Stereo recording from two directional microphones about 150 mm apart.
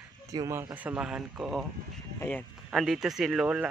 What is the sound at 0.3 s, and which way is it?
Speech, 20° right (ahead or behind).